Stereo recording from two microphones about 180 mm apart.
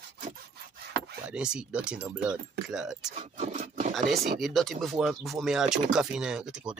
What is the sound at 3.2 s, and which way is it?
Speech, 40° right (ahead or behind).